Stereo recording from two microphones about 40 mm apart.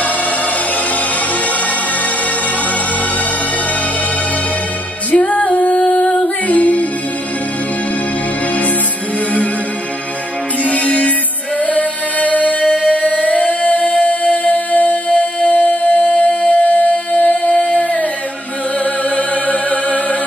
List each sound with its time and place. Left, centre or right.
5.2 s music: left
10.6 s music: left
19.0 s music: left